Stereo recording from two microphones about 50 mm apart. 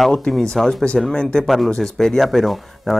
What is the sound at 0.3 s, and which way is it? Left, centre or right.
Speech, centre.